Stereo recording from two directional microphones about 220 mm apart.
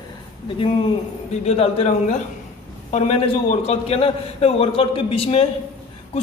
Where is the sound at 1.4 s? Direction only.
30° left (ahead or behind).